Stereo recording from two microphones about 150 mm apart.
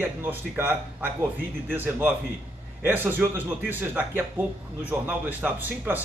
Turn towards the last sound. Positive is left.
turn(degrees=-10)  # may be behind; listen again after turning